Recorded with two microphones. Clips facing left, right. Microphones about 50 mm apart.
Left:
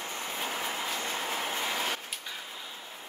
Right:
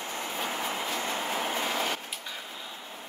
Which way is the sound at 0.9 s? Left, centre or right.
Centre.